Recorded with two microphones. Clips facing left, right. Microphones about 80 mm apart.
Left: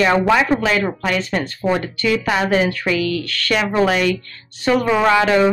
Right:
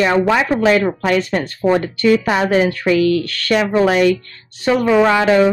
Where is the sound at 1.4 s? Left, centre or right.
Centre.